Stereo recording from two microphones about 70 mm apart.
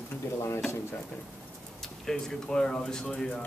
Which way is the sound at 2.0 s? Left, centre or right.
Centre.